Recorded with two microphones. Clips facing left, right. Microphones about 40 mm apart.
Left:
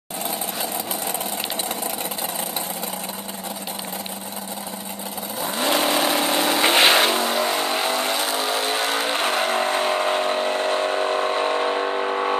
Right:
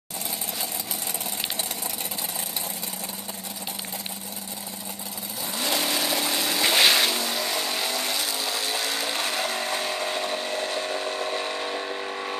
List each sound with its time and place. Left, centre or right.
5.4 s vehicle: left